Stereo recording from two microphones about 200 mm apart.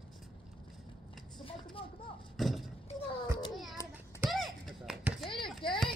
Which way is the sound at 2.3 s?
Centre (ahead or behind).